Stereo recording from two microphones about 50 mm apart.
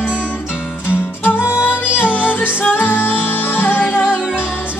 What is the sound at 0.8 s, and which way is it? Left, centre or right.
Music, left.